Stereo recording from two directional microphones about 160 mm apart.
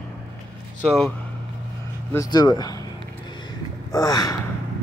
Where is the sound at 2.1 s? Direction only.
20° left (ahead or behind).